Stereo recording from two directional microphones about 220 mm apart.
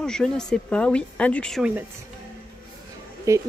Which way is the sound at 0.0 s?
5° left (ahead or behind).